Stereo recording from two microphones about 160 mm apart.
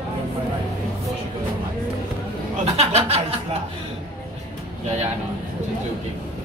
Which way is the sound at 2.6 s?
40° right (ahead or behind).